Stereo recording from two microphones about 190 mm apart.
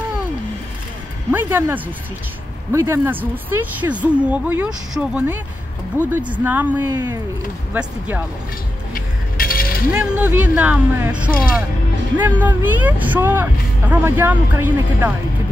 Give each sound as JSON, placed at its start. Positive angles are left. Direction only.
{"t": 1.3, "sound": "speech", "side_deg": -10}
{"t": 8.9, "sound": "music", "side_deg": 50}
{"t": 9.9, "sound": "speech", "side_deg": -5}